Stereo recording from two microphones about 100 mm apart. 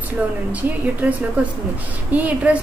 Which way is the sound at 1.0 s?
20° right (ahead or behind).